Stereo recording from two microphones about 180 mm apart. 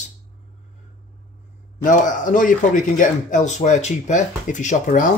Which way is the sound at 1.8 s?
45° left (ahead or behind).